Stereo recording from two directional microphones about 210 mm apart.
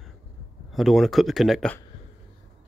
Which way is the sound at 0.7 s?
Centre (ahead or behind).